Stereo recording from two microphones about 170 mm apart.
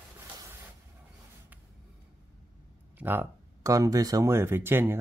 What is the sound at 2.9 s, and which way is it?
Speech, 10° right (ahead or behind).